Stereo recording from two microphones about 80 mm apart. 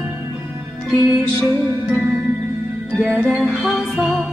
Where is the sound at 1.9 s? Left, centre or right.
Centre.